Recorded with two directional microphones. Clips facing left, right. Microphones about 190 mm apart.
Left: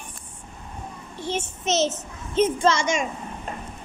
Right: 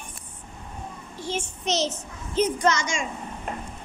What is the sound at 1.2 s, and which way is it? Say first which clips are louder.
A child's voice: left 2 dB; 20° left (ahead or behind).